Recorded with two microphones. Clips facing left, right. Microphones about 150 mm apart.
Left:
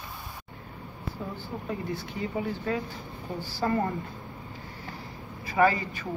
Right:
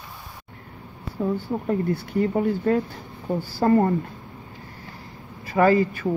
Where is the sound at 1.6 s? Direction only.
55° right (ahead or behind).